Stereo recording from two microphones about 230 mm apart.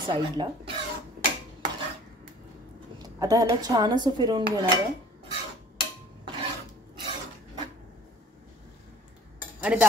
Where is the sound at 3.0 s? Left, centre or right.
Centre.